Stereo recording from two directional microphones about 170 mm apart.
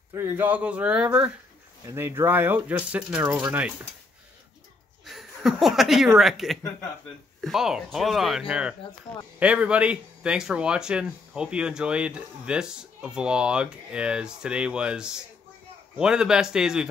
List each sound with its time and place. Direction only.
0.1 s speech: 15° right (ahead or behind)
5.0 s speech: centre (ahead or behind)